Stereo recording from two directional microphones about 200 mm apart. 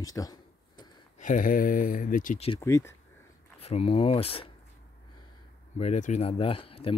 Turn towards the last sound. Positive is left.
turn(degrees=30)  # may be behind; listen again after turning